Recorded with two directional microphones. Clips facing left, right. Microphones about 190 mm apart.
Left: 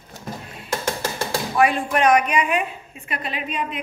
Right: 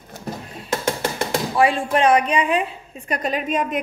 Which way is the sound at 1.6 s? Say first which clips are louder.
Right 1 dB; 30° right (ahead or behind).